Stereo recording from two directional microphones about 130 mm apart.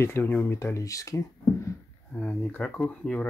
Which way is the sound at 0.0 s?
20° left (ahead or behind).